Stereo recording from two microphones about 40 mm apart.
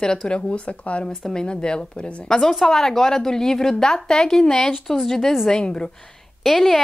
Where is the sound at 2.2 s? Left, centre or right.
Centre.